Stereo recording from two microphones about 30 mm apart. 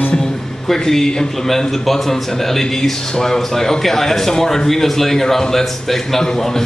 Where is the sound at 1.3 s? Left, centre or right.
Centre.